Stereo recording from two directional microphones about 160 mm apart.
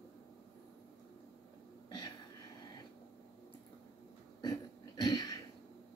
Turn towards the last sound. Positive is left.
turn(degrees=25)  # may be behind; listen again after turning